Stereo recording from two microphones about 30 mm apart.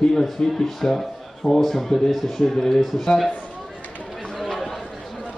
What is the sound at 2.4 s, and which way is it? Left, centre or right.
Speech, centre.